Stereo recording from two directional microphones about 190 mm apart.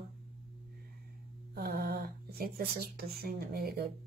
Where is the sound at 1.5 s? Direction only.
55° right (ahead or behind).